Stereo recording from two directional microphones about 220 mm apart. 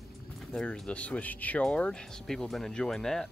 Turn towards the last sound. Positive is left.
turn(degrees=0)  # may be behind; listen again after turning